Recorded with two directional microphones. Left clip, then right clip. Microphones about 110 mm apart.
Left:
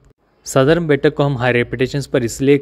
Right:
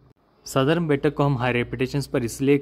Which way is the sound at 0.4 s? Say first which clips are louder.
Left 8 dB; 25° left (ahead or behind).